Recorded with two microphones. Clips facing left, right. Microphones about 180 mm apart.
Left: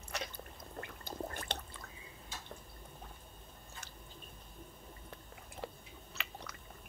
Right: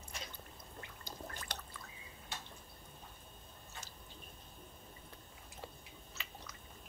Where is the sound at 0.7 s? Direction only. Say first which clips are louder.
Left 8 dB; 55° left (ahead or behind).